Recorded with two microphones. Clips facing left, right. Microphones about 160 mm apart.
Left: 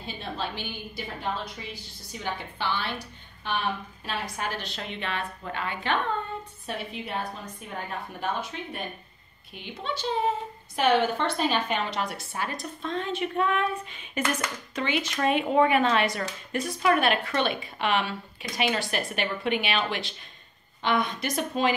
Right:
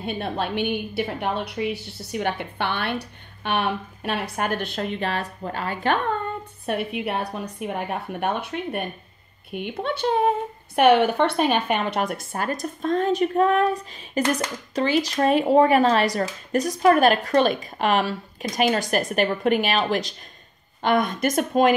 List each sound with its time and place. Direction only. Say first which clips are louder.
0.0 s a woman's voice: right 7 dB; 60° right (ahead or behind); by 5.9 s 40° right (ahead or behind)
6.6 s a woman's voice: right 11 dB; 60° right (ahead or behind)